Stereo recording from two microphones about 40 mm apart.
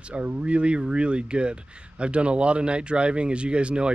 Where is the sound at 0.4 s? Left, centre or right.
Right.